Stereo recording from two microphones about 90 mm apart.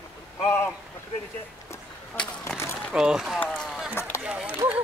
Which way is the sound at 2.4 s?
25° left (ahead or behind).